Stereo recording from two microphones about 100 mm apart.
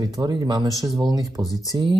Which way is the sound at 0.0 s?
45° right (ahead or behind).